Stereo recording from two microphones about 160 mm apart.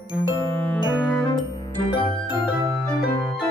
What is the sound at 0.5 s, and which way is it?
Music, 10° left (ahead or behind).